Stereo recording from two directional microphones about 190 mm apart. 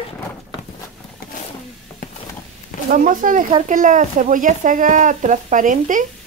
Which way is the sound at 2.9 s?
45° right (ahead or behind).